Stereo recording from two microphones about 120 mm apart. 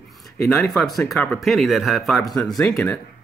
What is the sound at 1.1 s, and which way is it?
Speech, 10° left (ahead or behind).